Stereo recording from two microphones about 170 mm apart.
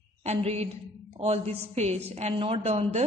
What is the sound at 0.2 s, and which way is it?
A woman's voice, 40° right (ahead or behind).